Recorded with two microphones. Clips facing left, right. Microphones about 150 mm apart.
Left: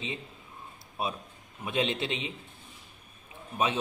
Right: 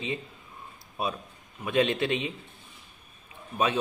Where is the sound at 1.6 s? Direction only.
20° left (ahead or behind).